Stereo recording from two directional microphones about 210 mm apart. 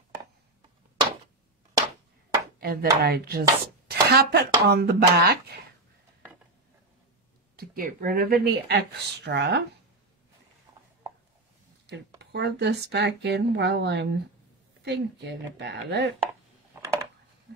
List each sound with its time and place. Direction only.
2.6 s speech: 45° right (ahead or behind)
3.0 s chopping: 45° right (ahead or behind)
7.5 s chopping: 45° right (ahead or behind)
10.7 s chopping: 15° right (ahead or behind)
12.2 s chopping: 55° right (ahead or behind)
16.8 s a sound: 10° right (ahead or behind)